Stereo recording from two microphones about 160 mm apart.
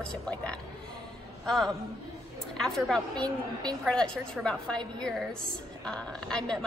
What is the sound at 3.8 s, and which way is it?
A woman's voice, 5° left (ahead or behind).